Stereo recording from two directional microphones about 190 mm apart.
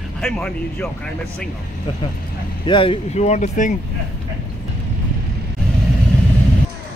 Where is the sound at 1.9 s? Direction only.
25° left (ahead or behind).